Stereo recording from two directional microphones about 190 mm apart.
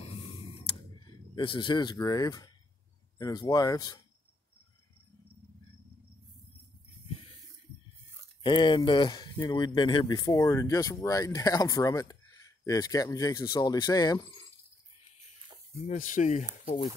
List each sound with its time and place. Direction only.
1.0 s speech: 25° left (ahead or behind)
8.4 s speech: 25° left (ahead or behind)
15.9 s speech: 40° left (ahead or behind)